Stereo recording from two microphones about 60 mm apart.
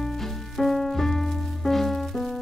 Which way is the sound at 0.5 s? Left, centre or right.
Centre.